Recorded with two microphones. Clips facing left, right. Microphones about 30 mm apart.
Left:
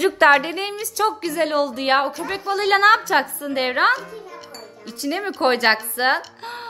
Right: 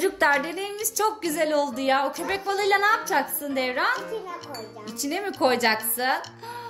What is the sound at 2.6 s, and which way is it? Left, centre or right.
Speech, left.